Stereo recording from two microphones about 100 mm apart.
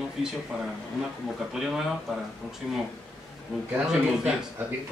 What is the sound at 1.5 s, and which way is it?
Speech, 5° right (ahead or behind).